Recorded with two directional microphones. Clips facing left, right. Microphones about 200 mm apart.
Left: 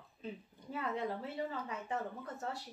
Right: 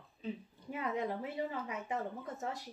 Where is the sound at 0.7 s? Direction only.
15° right (ahead or behind).